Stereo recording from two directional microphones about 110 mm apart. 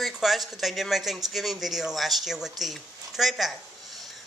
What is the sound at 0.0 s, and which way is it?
A woman's voice, centre (ahead or behind).